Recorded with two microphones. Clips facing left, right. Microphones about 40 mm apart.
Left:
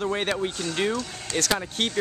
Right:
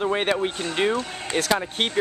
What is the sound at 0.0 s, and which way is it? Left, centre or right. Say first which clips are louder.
Speech: right 3 dB; centre.